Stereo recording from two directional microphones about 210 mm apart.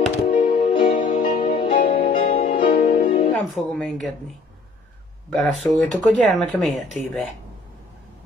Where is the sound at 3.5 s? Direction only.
Centre (ahead or behind).